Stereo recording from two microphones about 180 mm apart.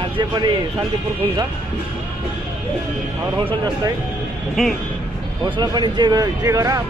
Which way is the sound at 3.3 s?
25° right (ahead or behind).